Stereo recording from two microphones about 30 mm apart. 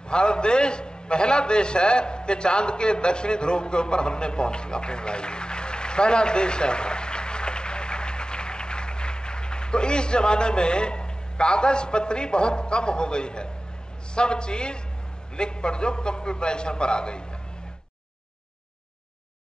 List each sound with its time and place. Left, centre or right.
0.1 s a man's voice: left